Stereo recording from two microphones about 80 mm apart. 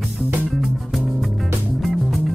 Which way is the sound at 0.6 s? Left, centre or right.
Centre.